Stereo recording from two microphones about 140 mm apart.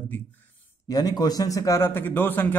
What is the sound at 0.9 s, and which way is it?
A man's voice, 25° left (ahead or behind).